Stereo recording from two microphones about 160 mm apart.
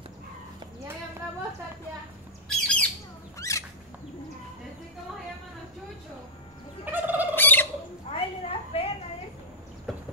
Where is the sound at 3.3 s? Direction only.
20° left (ahead or behind).